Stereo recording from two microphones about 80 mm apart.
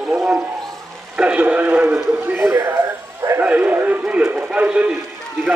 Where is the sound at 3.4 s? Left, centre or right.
Right.